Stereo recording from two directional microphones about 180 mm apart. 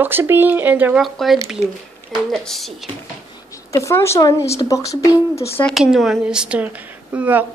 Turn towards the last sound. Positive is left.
turn(degrees=-10)  # may be behind; listen again after turning